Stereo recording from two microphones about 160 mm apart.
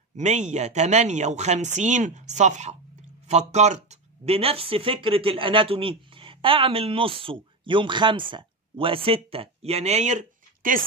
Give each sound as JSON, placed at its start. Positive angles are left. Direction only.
{"t": 0.1, "sound": "speech", "side_deg": -45}